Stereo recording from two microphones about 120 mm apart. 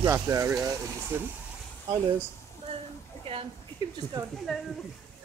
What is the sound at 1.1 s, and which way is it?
Speech, 15° right (ahead or behind).